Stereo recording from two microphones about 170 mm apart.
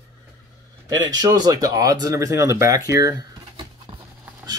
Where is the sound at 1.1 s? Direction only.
25° right (ahead or behind).